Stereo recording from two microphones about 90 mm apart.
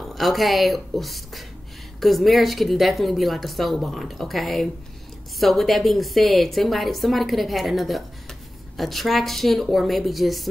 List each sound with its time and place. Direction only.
0.0 s a woman's voice: centre (ahead or behind)